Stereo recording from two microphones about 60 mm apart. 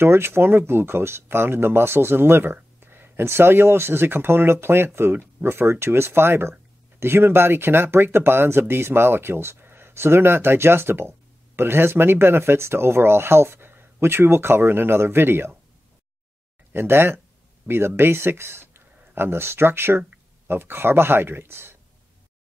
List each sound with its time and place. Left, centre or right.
0.0 s speech: right
16.7 s speech: right